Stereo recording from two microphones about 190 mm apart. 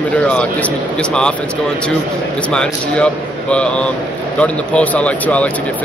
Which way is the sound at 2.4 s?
5° left (ahead or behind).